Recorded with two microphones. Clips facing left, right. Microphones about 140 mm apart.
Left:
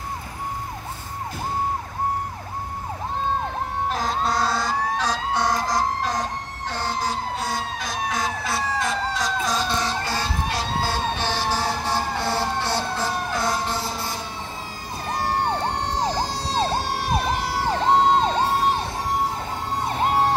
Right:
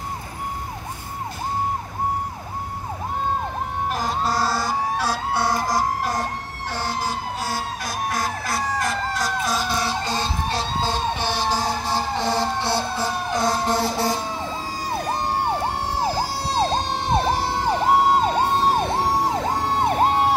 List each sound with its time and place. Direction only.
3.9 s emergency vehicle: 5° right (ahead or behind)
10.0 s emergency vehicle: 25° right (ahead or behind)
13.7 s music: 75° right (ahead or behind)
14.7 s emergency vehicle: 90° right
15.2 s emergency vehicle: 10° right (ahead or behind); by 17.6 s 30° right (ahead or behind)
17.6 s emergency vehicle: 10° right (ahead or behind)
18.8 s emergency vehicle: 70° right (ahead or behind)